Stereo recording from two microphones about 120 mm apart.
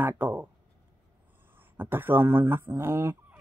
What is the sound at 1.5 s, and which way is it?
Speech, 15° right (ahead or behind).